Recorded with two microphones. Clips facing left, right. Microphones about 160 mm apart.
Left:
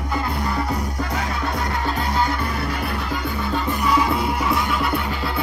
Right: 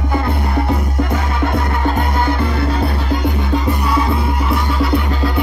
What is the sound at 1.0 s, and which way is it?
Music, 55° right (ahead or behind).